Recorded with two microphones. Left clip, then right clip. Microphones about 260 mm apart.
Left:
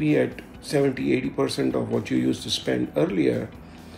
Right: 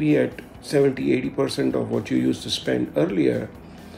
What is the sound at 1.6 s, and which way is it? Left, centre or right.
Speech, right.